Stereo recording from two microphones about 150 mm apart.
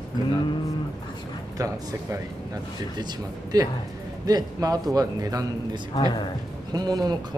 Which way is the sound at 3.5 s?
25° right (ahead or behind).